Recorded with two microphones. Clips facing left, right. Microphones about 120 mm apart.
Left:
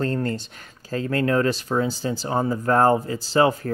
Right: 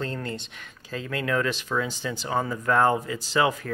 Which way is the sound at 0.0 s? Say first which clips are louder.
Left 7 dB; 45° left (ahead or behind).